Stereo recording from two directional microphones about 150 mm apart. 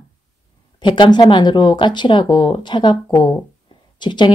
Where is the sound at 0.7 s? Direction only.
30° left (ahead or behind).